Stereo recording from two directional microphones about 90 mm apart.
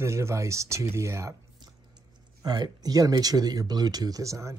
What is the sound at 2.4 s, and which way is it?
Speech, 45° right (ahead or behind).